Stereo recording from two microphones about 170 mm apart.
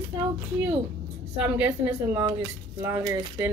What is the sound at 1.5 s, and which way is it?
A woman's voice, 10° right (ahead or behind).